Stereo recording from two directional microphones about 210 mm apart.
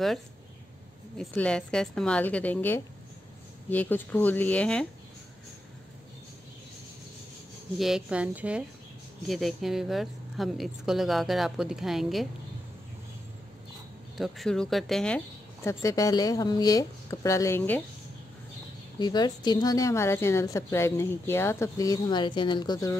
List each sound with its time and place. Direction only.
1.1 s a woman's voice: 5° left (ahead or behind)
7.8 s a woman's voice: 5° right (ahead or behind)
14.1 s a woman's voice: centre (ahead or behind)
18.9 s a woman's voice: 20° left (ahead or behind)